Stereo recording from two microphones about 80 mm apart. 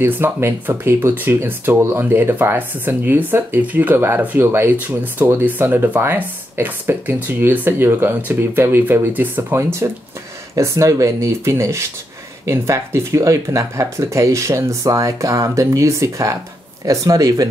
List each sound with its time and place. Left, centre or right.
0.0 s speech: right
9.6 s speech: right